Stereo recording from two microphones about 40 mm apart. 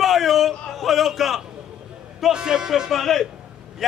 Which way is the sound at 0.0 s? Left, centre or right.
Centre.